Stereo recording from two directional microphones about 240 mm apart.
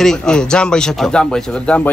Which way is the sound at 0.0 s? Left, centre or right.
Centre.